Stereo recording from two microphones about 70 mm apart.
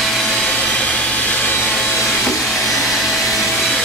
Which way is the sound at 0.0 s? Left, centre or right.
Centre.